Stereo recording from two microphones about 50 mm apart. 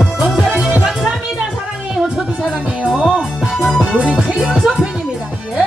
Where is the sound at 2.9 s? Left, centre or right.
Centre.